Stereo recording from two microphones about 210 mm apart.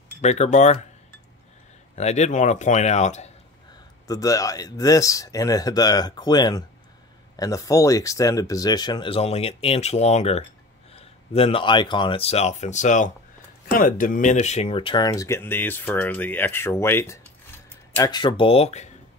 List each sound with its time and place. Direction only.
0.2 s speech: 35° left (ahead or behind)
2.0 s speech: 30° left (ahead or behind)
4.1 s speech: 15° left (ahead or behind)